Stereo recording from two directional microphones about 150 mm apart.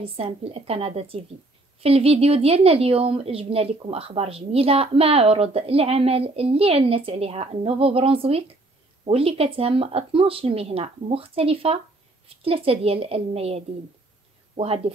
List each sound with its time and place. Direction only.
0.0 s a woman's voice: 40° right (ahead or behind)